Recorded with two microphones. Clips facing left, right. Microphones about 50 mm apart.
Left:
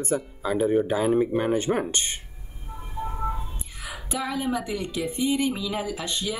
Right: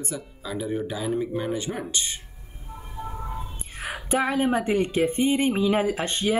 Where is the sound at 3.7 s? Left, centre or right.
Right.